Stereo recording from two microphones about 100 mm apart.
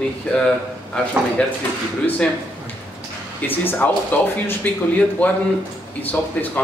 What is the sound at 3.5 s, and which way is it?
Speech, 20° left (ahead or behind).